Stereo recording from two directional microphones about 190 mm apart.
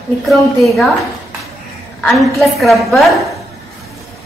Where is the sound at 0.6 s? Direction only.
Centre (ahead or behind).